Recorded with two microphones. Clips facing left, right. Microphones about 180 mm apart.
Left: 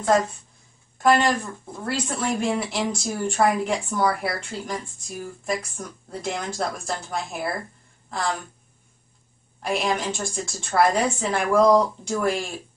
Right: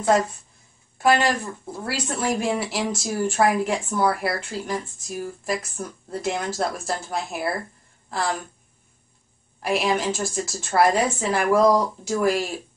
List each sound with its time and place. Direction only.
0.9 s speech: 5° right (ahead or behind)
9.6 s speech: 5° right (ahead or behind)